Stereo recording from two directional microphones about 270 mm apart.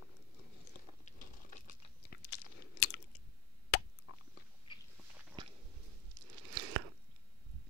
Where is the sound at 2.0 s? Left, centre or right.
Left.